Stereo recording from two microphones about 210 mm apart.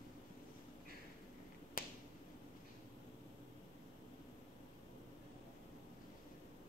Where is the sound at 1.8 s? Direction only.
40° left (ahead or behind).